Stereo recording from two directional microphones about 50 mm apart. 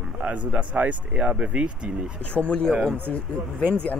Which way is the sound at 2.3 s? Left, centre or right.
Left.